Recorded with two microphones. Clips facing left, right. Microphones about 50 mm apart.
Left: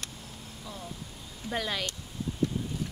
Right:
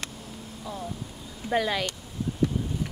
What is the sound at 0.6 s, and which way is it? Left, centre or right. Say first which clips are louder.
Speech: right 7 dB; centre.